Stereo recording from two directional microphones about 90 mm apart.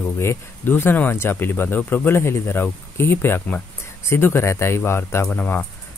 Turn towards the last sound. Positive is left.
turn(degrees=20)  # may be behind; listen again after turning